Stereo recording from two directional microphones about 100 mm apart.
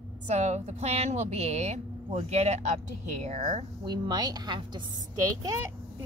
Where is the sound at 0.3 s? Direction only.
90° right.